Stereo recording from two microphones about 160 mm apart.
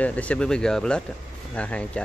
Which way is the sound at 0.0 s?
10° left (ahead or behind).